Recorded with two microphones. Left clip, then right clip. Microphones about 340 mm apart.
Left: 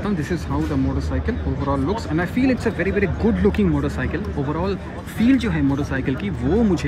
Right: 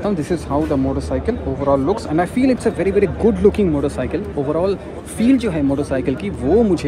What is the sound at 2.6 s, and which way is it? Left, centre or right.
Speech, right.